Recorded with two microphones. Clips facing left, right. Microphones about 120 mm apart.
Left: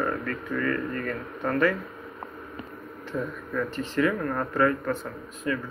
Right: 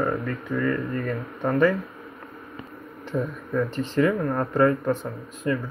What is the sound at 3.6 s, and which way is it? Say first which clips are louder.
Speech: right 4 dB; 30° right (ahead or behind).